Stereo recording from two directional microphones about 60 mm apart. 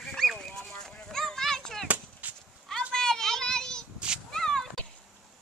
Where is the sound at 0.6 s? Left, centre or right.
Centre.